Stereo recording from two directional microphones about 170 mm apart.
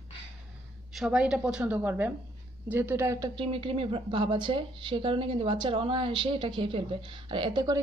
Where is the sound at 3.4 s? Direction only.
30° right (ahead or behind).